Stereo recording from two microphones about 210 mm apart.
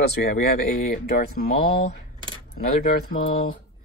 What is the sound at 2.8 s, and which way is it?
Speech, 45° left (ahead or behind).